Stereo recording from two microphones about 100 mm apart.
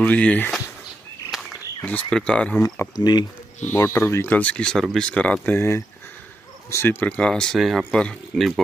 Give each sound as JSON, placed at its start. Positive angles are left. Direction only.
{"t": 0.0, "sound": "speech", "side_deg": 15}
{"t": 1.3, "sound": "walk", "side_deg": -5}
{"t": 1.9, "sound": "speech", "side_deg": 10}
{"t": 3.0, "sound": "speech", "side_deg": 45}
{"t": 3.7, "sound": "speech", "side_deg": 25}
{"t": 4.4, "sound": "speech", "side_deg": 15}
{"t": 7.5, "sound": "speech", "side_deg": 0}